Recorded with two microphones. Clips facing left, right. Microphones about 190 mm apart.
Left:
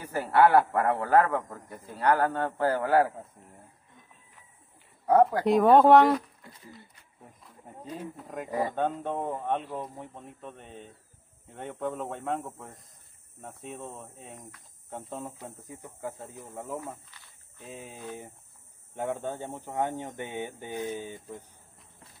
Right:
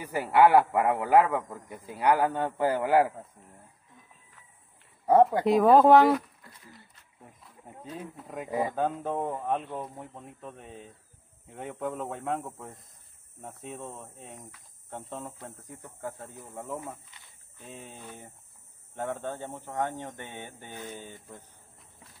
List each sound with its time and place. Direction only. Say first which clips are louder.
0.0 s a man's voice: right 1 dB; 15° right (ahead or behind)
5.4 s speech: even; centre (ahead or behind)
7.2 s wild animals: even; centre (ahead or behind)
7.9 s speech: left 1 dB; centre (ahead or behind)
17.1 s a sound: even; 20° right (ahead or behind)
17.6 s speech: left 2 dB; 5° left (ahead or behind)